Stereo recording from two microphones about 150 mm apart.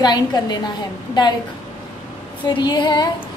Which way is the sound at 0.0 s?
25° left (ahead or behind).